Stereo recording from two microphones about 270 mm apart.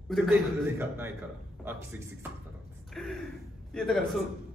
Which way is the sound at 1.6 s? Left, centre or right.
Centre.